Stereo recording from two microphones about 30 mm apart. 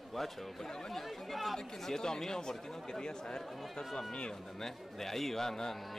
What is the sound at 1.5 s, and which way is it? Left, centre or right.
Speech, centre.